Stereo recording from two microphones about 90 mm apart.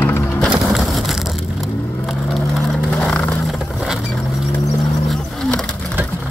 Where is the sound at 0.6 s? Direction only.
Centre (ahead or behind).